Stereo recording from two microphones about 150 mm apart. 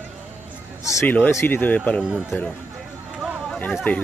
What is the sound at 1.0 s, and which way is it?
Speech, 10° left (ahead or behind).